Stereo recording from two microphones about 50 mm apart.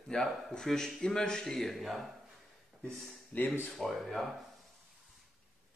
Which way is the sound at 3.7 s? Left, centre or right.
Centre.